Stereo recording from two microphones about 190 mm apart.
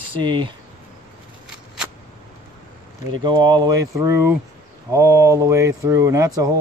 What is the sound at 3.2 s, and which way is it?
Speech, 25° right (ahead or behind).